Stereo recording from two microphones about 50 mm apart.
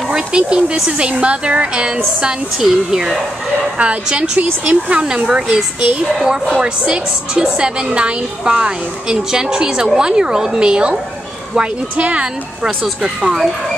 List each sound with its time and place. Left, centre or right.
0.1 s a sound: centre
0.8 s a woman's voice: right
2.6 s a woman's voice: centre
3.7 s a woman's voice: right
13.0 s a woman's voice: centre